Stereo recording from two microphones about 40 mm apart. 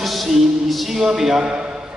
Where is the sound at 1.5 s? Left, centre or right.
Right.